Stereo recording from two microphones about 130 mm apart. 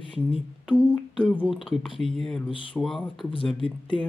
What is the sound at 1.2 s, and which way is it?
Speech, 10° left (ahead or behind).